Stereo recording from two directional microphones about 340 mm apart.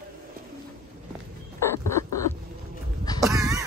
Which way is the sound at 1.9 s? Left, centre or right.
Centre.